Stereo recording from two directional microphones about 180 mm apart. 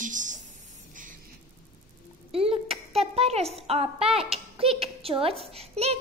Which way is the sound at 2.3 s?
35° right (ahead or behind).